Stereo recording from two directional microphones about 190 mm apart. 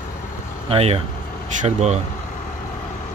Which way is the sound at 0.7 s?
30° right (ahead or behind).